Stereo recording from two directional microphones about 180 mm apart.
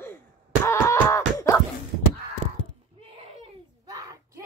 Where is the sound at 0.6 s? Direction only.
15° left (ahead or behind).